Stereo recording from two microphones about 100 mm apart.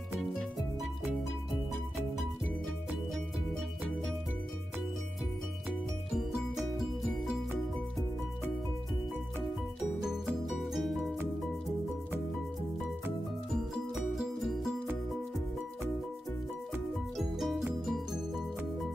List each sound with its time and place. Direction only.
7.2 s music: centre (ahead or behind)
10.0 s music: 5° right (ahead or behind)
13.9 s music: centre (ahead or behind)
17.2 s music: centre (ahead or behind)